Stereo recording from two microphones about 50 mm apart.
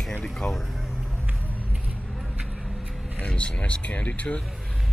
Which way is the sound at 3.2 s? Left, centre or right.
Left.